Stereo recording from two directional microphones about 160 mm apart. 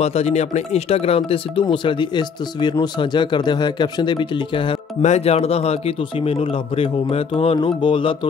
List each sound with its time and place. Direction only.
0.0 s speech: 40° left (ahead or behind)
5.0 s speech: 45° left (ahead or behind)